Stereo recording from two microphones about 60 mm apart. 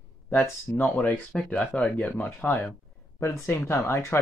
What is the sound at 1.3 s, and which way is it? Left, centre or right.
Speech, centre.